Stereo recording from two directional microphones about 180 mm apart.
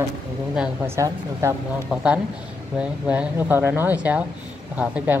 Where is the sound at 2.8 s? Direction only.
10° right (ahead or behind).